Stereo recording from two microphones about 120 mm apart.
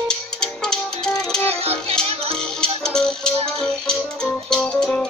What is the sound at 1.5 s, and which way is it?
Music, 55° right (ahead or behind).